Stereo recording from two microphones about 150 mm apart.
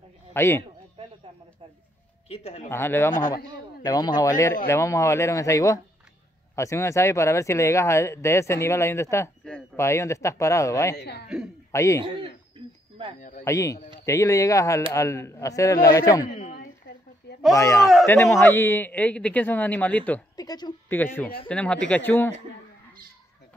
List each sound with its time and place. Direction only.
0.3 s a man's voice: 15° left (ahead or behind)
2.2 s speech: 45° left (ahead or behind)
2.7 s a man's voice: 15° left (ahead or behind)
3.1 s a man's voice: 60° left (ahead or behind)
3.8 s speech: 25° left (ahead or behind)
11.0 s speech: 90° left
11.7 s a man's voice: 20° left (ahead or behind)
12.0 s a sound: 35° right (ahead or behind)
13.4 s speech: 20° left (ahead or behind)
17.3 s a sound: 90° left
17.6 s a man's voice: 20° left (ahead or behind)
20.3 s speech: 25° left (ahead or behind)
20.9 s a man's voice: 15° left (ahead or behind)